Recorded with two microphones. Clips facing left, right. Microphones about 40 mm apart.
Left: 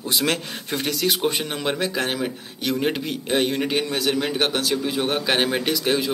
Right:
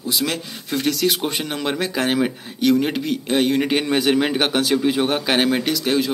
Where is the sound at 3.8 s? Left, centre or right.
Right.